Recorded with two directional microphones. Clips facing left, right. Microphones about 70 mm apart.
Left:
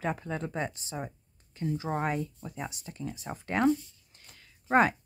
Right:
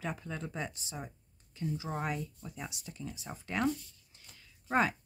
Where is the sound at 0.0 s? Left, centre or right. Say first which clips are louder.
Left 6 dB; left.